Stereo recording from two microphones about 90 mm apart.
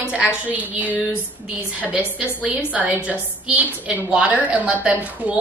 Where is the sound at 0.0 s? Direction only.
15° right (ahead or behind).